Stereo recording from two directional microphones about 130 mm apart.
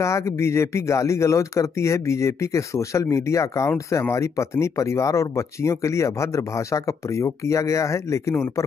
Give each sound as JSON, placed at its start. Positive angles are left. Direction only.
{"t": 0.0, "sound": "speech", "side_deg": 20}